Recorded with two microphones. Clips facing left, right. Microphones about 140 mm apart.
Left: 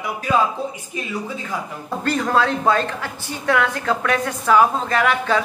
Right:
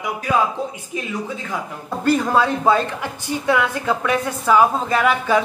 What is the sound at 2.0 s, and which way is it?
A woman's voice, 10° right (ahead or behind).